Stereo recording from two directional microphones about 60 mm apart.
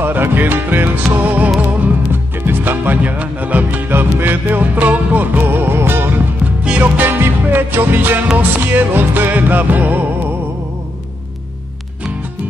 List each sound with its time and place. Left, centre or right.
0.0 s music: right